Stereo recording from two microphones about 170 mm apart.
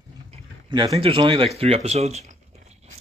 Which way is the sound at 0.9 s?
30° right (ahead or behind).